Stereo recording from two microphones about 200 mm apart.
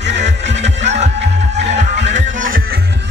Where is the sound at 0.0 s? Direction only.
60° right (ahead or behind).